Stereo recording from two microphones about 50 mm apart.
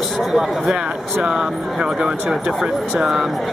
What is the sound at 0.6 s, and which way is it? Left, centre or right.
Speech, centre.